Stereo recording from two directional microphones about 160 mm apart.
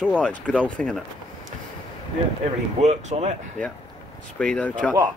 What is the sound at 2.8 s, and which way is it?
Speech, 45° right (ahead or behind).